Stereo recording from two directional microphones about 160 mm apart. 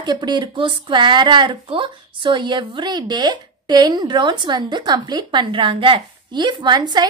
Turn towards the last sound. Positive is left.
turn(degrees=-25)  # may be behind; listen again after turning